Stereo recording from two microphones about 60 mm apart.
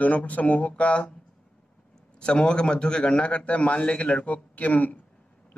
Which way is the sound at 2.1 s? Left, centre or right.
Centre.